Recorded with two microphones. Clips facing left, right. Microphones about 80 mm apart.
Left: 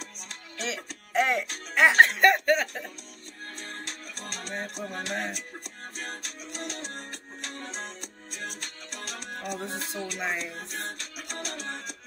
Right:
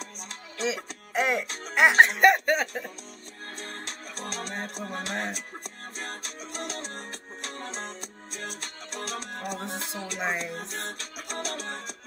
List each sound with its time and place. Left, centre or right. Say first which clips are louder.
0.6 s music: right 5 dB; centre
1.8 s speech: even; centre
3.5 s music: right 1 dB; right